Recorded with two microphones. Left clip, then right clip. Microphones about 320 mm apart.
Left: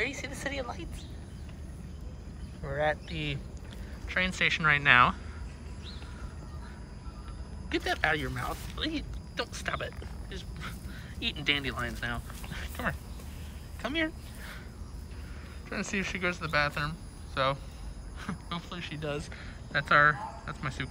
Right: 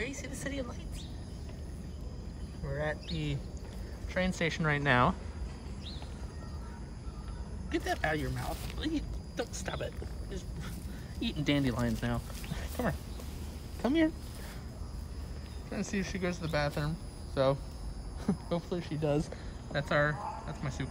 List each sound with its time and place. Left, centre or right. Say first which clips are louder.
0.0 s vehicle: left 5 dB; centre
2.6 s speech: left 6 dB; centre
7.7 s speech: left 4 dB; centre
15.7 s speech: left 4 dB; centre